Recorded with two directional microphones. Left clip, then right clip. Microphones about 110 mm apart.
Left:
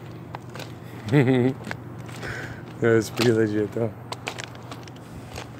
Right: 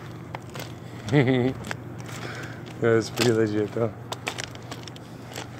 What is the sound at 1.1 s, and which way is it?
Speech, 85° left.